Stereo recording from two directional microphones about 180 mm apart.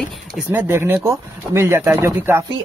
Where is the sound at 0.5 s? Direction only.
15° right (ahead or behind).